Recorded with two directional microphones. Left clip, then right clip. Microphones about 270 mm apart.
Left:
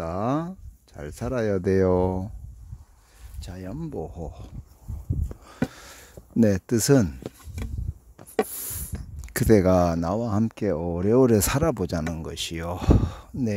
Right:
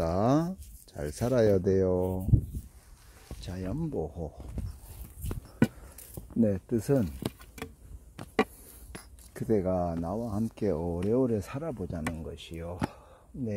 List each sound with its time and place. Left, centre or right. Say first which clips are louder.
0.0 s a sound: even; centre
1.6 s speech: left 5 dB; left
3.3 s speech: even; centre
5.3 s a sound: right 2 dB; right
6.4 s speech: left 7 dB; left
9.3 s speech: left 10 dB; left
10.4 s speech: left 5 dB; left